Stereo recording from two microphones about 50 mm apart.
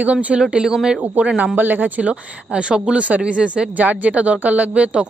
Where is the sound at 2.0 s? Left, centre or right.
Right.